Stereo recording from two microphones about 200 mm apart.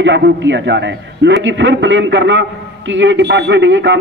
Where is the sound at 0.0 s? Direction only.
65° right (ahead or behind).